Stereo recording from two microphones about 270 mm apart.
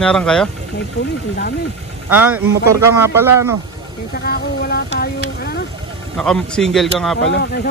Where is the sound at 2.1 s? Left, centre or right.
Centre.